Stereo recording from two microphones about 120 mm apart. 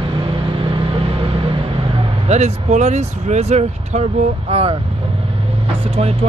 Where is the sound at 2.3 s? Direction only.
70° right (ahead or behind).